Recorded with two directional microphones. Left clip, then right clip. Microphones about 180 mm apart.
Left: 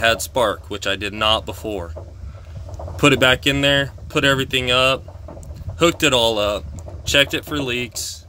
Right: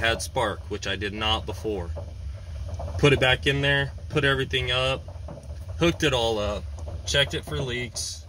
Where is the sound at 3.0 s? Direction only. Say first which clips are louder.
Left 6 dB; 50° left (ahead or behind).